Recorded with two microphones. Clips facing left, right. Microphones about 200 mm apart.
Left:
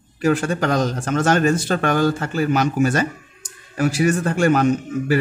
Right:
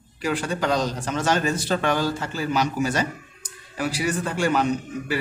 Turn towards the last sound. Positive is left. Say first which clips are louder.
# left 7 dB
turn(degrees=50)  # may be behind; listen again after turning